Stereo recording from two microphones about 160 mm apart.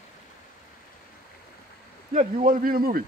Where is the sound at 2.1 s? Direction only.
60° right (ahead or behind).